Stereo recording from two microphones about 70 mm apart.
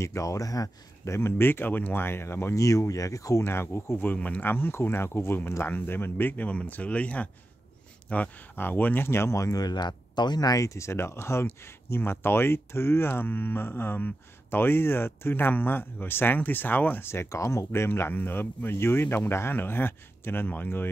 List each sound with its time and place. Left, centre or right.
0.0 s speech: left
1.1 s speech: left
3.4 s speech: left
9.5 s speech: left
17.8 s speech: left